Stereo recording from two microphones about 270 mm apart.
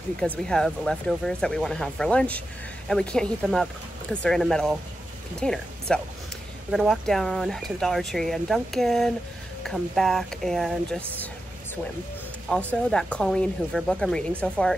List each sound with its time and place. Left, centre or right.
0.2 s speech: centre
12.4 s speech: centre